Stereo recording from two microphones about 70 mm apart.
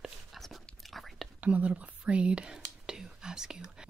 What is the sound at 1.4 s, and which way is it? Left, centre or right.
Whispering, right.